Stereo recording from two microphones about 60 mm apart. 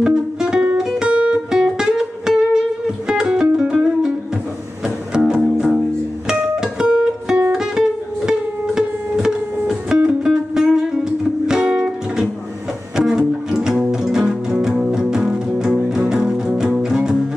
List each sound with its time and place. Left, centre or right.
0.0 s music: centre
1.1 s music: right